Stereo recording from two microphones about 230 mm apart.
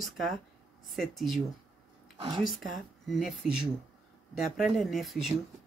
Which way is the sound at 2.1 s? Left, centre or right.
Centre.